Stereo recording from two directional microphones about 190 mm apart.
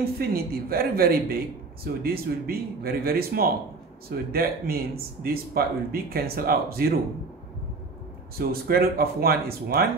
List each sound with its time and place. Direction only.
0.0 s speech: 50° right (ahead or behind)
8.4 s speech: 55° right (ahead or behind)